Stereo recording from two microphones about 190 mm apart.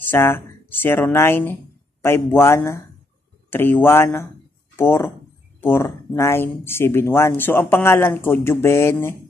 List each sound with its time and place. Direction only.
0.1 s speech: 10° left (ahead or behind)